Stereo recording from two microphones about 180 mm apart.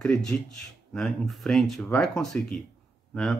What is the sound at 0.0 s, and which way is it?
Speech, 5° left (ahead or behind).